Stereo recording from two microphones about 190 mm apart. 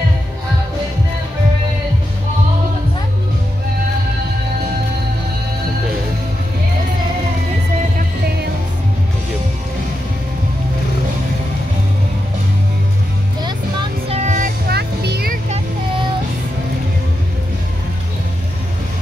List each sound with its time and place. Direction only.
14.0 s music: 35° right (ahead or behind)
14.7 s music: 60° right (ahead or behind)